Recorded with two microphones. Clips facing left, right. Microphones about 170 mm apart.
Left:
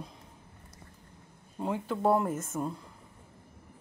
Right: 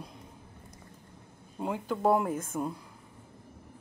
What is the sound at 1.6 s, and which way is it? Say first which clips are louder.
Speech: even; centre (ahead or behind).